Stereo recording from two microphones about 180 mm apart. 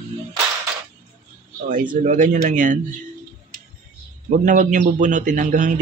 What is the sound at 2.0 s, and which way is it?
Speech, 45° right (ahead or behind).